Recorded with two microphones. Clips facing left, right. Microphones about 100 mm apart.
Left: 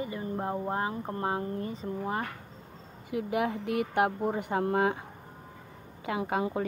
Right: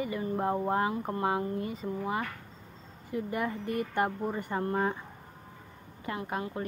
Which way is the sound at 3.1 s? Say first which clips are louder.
Left 3 dB; 85° left.